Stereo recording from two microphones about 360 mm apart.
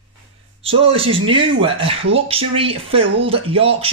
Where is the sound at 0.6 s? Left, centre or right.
Centre.